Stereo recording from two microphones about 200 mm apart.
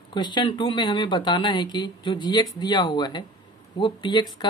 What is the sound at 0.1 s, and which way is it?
A woman's voice, 20° left (ahead or behind).